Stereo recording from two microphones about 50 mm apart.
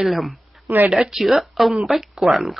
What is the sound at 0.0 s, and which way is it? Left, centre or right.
Speech, centre.